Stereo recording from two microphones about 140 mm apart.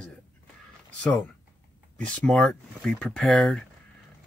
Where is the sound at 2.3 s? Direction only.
Centre (ahead or behind).